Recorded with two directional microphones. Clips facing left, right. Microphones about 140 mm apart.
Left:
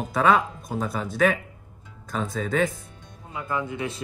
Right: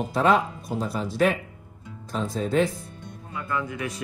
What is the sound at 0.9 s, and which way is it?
Speech, 50° left (ahead or behind).